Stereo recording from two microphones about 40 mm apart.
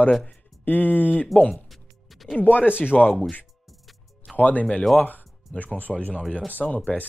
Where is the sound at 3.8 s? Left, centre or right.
Centre.